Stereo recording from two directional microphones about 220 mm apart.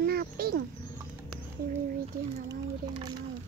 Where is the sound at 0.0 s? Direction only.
45° right (ahead or behind).